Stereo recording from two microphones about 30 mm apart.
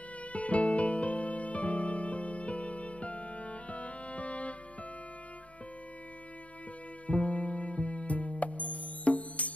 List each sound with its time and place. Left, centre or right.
0.3 s music: left
7.1 s music: left